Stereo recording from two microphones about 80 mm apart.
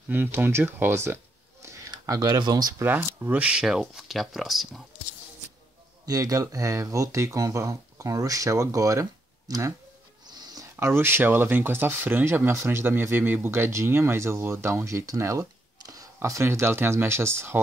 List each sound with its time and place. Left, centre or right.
0.1 s speech: right
1.9 s speech: right
2.8 s speech: right
3.3 s speech: centre
6.0 s speech: right
10.2 s a sound: right
10.6 s speech: right
15.8 s a sound: right
16.2 s speech: right